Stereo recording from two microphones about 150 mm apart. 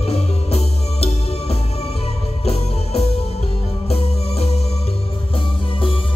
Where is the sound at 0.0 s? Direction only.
45° left (ahead or behind).